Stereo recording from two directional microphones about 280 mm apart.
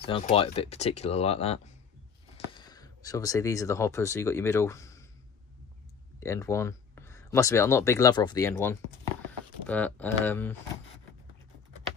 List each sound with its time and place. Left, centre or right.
0.0 s speech: centre
6.1 s speech: centre